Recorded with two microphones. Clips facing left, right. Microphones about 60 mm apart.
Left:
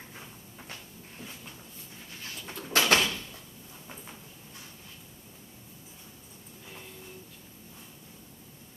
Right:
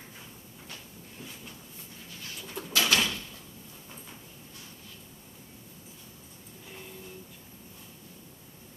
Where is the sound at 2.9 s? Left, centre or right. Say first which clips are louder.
Left 2 dB; left.